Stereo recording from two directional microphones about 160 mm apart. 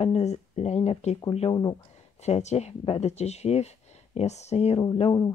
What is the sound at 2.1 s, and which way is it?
Speech, 45° left (ahead or behind).